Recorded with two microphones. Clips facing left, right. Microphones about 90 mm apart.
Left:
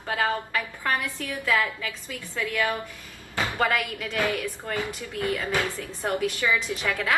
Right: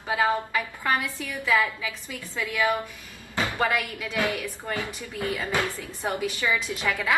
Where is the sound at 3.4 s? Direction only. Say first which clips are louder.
Left 1 dB; 15° right (ahead or behind).